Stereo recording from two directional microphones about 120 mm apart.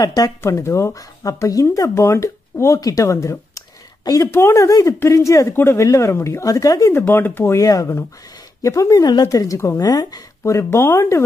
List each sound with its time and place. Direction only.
0.0 s speech: 30° left (ahead or behind)
6.9 s speech: 20° left (ahead or behind)